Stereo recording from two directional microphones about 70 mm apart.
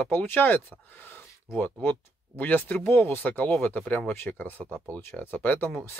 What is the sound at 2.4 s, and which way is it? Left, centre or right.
Speech, left.